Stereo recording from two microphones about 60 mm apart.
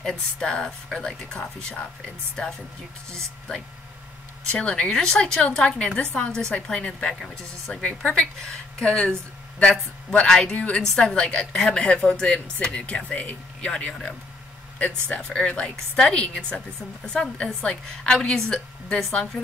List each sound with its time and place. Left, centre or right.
0.0 s speech: centre
3.1 s a woman's voice: centre
15.2 s speech: centre